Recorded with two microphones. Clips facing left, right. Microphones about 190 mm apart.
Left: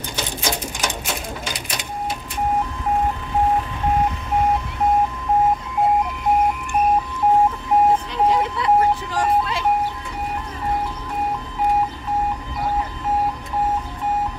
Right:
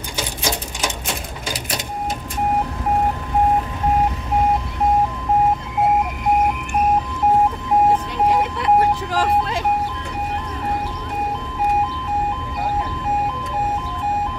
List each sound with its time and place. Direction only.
8.5 s vehicle: 65° right (ahead or behind)